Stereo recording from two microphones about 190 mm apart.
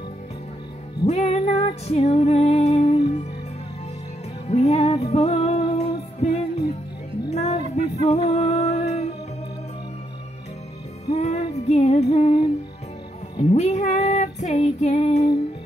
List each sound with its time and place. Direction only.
1.0 s music: 35° left (ahead or behind)
4.5 s music: 35° left (ahead or behind)
11.1 s music: 35° left (ahead or behind)
13.4 s female singing: 35° left (ahead or behind)